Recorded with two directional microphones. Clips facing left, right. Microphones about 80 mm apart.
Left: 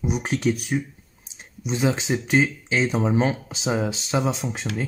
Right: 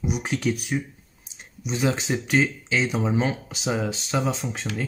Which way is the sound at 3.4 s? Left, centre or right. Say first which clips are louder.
Left 2 dB; left.